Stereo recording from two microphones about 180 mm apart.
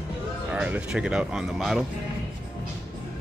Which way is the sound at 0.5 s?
5° right (ahead or behind).